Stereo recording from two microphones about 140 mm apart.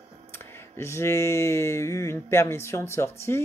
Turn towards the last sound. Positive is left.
turn(degrees=20)  # may be behind; listen again after turning